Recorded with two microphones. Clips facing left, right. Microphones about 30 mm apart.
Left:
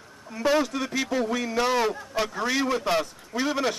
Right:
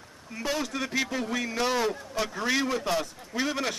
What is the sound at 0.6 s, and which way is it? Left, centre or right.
A man's voice, centre.